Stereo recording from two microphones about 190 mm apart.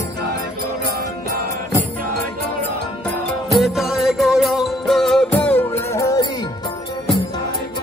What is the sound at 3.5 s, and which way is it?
Music, centre (ahead or behind).